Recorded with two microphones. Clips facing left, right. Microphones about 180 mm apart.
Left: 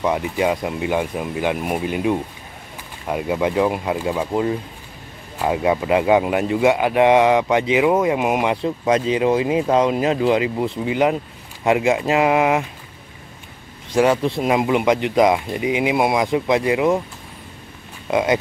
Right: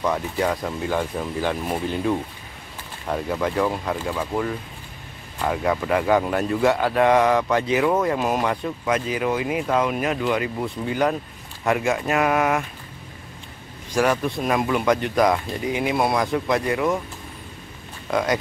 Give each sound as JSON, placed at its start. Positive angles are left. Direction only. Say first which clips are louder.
{"t": 0.0, "sound": "speech", "louder": "left 3 dB", "side_deg": 15}
{"t": 13.9, "sound": "speech", "louder": "left 4 dB", "side_deg": 25}
{"t": 18.1, "sound": "speech", "louder": "left 4 dB", "side_deg": 20}